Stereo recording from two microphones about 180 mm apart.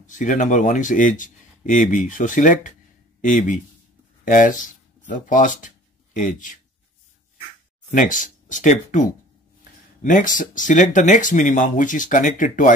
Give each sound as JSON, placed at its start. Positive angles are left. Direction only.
{"t": 0.0, "sound": "speech", "side_deg": 45}
{"t": 4.2, "sound": "speech", "side_deg": 45}
{"t": 7.9, "sound": "speech", "side_deg": 45}